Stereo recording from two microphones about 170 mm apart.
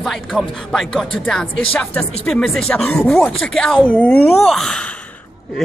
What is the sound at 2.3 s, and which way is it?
Speech, 5° left (ahead or behind).